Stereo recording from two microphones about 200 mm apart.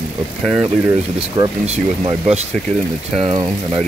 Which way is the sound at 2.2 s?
35° right (ahead or behind).